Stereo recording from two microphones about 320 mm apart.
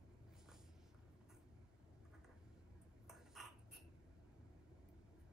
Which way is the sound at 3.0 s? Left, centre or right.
Centre.